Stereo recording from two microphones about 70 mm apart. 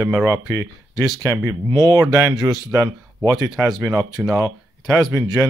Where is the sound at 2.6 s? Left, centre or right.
Right.